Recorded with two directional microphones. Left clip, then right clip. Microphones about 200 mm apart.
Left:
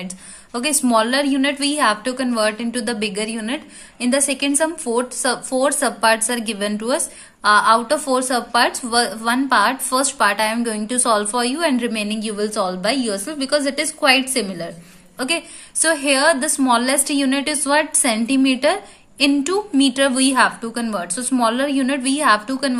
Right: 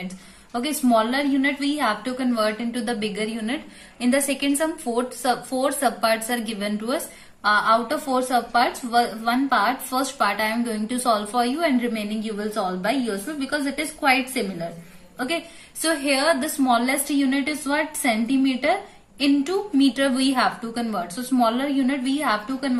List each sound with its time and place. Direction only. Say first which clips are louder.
0.0 s a woman's voice: left 3 dB; 40° left (ahead or behind)